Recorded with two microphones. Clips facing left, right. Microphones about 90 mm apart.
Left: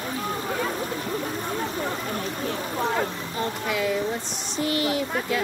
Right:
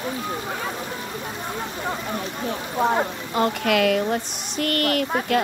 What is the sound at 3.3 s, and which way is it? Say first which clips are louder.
Speech: right 7 dB; 80° right.